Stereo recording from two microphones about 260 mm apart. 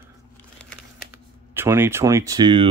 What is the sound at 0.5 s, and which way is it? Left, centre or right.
Crumpling, centre.